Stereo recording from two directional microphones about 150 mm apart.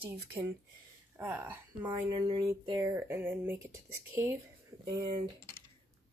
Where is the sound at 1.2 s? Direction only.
10° right (ahead or behind).